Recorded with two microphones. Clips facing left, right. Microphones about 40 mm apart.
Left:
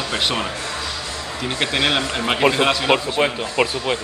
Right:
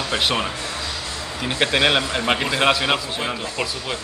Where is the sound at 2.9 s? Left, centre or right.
Left.